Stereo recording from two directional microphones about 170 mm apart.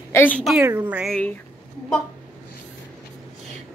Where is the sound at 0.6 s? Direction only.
10° right (ahead or behind).